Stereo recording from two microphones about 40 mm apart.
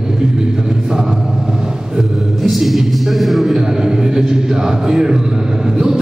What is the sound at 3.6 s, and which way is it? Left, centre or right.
Speech, centre.